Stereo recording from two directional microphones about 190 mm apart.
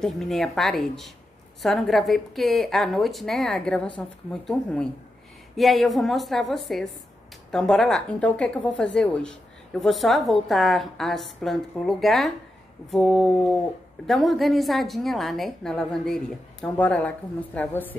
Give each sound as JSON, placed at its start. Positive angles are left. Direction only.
{"t": 0.0, "sound": "a woman's voice", "side_deg": 0}